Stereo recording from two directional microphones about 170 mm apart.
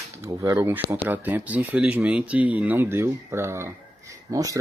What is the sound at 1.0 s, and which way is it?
Speech, 10° right (ahead or behind).